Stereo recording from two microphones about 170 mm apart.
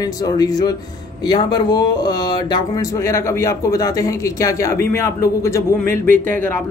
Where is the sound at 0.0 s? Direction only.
25° left (ahead or behind).